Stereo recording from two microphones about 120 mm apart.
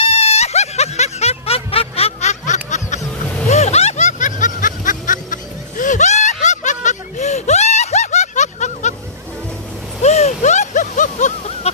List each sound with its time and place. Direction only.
0.0 s music: 60° left (ahead or behind); by 3.0 s 85° left
3.4 s vehicle: 65° left (ahead or behind); by 8.9 s 80° left
10.0 s a sound: 65° left (ahead or behind)